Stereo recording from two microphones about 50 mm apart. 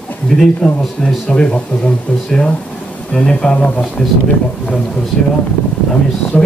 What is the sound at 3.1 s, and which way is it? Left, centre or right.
Speech, centre.